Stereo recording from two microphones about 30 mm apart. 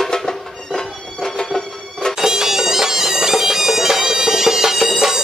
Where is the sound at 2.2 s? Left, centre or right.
Centre.